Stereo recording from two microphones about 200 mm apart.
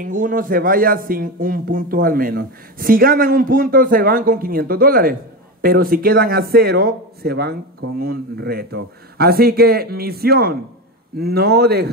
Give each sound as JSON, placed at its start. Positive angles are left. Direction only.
{"t": 0.0, "sound": "speech", "side_deg": -40}